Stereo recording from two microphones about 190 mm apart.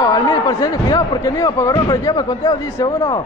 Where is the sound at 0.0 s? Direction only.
20° left (ahead or behind).